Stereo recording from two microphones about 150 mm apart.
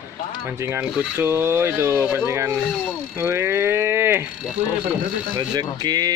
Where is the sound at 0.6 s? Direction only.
15° right (ahead or behind).